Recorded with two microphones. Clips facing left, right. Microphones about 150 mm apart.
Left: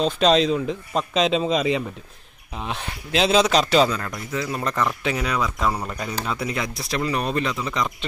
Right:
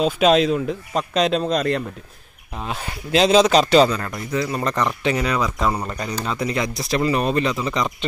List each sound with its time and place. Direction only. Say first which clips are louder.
0.0 s speech: right 2 dB; 5° right (ahead or behind)